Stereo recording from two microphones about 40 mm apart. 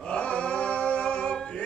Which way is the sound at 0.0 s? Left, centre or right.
Left.